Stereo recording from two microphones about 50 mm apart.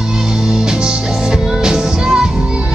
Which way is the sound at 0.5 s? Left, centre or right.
Centre.